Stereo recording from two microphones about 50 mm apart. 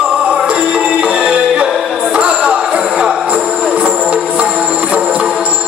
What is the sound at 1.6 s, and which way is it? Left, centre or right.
Music, centre.